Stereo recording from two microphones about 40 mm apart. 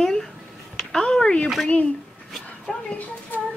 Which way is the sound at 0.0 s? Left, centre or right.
Centre.